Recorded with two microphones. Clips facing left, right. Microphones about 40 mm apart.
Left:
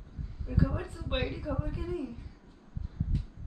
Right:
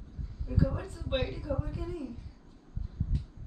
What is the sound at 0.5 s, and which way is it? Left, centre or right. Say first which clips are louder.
A woman's voice: even; centre.